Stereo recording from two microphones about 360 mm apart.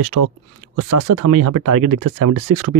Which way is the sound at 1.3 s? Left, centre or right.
Right.